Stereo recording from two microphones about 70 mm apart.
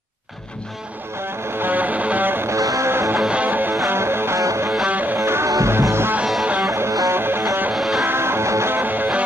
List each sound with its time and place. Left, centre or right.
1.6 s music: right
2.5 s music: right
2.9 s music: right
3.3 s music: right
3.7 s music: right
4.8 s music: right
5.2 s music: right
7.7 s music: centre
8.0 s music: right
8.7 s music: right